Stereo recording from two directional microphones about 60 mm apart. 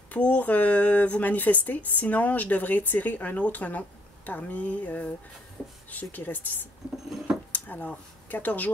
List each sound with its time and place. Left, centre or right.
0.1 s speech: left